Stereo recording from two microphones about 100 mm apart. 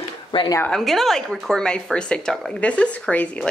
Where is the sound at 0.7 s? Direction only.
5° left (ahead or behind).